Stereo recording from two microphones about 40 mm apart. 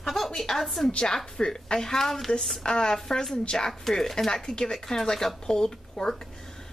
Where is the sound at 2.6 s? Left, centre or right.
Centre.